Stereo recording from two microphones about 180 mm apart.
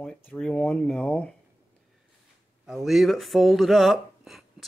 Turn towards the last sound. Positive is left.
turn(degrees=0)  # may be behind; listen again after turning